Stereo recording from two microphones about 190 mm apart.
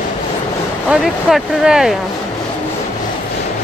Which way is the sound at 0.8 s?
Centre (ahead or behind).